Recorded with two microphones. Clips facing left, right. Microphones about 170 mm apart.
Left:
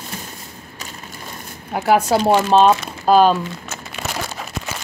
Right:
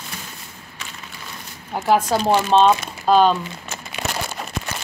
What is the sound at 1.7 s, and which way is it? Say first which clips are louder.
Speech: left 2 dB; 10° left (ahead or behind).